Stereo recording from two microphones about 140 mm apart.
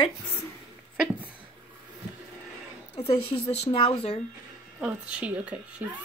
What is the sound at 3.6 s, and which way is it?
Speech, 40° left (ahead or behind).